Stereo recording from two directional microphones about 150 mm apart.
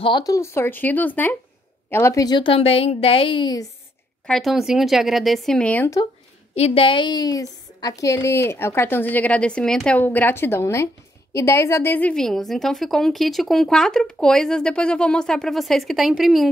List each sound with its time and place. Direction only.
0.0 s a woman's voice: 25° left (ahead or behind)
4.3 s a woman's voice: centre (ahead or behind)
6.5 s a woman's voice: 40° left (ahead or behind); by 16.4 s centre (ahead or behind)